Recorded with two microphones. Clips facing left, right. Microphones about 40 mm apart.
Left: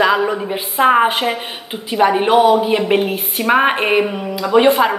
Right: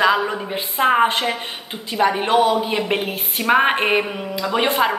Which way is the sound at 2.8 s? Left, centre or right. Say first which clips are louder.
Left 6 dB; centre.